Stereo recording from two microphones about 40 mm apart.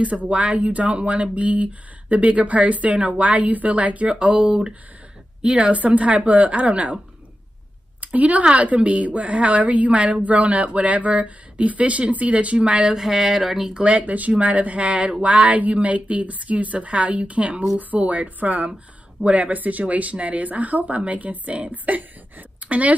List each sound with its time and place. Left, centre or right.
0.3 s speech: right
5.4 s speech: right
8.0 s speech: right
12.5 s speech: right
12.9 s a sound: centre
13.8 s speech: right